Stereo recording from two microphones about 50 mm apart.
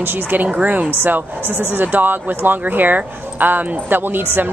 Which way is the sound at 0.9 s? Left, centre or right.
Right.